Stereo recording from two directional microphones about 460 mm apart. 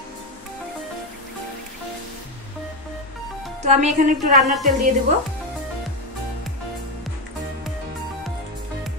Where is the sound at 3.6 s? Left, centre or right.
Centre.